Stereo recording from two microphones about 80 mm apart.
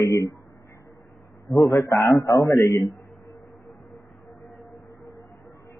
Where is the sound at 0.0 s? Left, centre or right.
Left.